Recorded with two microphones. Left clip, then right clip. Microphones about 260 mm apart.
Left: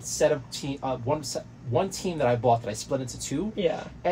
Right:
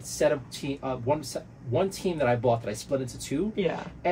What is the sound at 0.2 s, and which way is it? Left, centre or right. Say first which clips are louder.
Speech: left 1 dB; centre.